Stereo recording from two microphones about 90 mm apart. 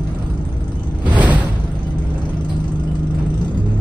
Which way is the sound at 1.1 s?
15° right (ahead or behind).